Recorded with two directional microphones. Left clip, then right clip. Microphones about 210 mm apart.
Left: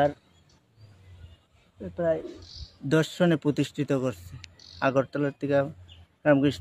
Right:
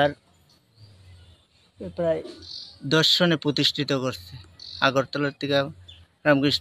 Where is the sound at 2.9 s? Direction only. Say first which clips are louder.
Right 4 dB; 10° left (ahead or behind).